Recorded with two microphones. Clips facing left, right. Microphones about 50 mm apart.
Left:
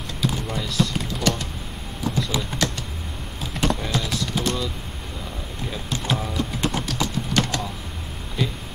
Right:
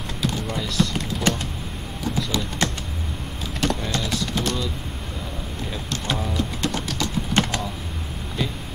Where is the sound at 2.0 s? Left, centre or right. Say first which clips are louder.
Left 1 dB; centre.